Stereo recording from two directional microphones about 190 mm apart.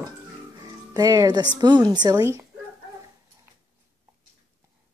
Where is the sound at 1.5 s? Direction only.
20° right (ahead or behind).